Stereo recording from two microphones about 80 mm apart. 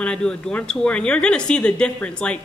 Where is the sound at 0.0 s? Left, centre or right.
Centre.